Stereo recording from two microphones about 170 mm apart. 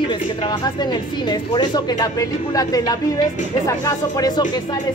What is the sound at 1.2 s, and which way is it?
Speech, 25° left (ahead or behind).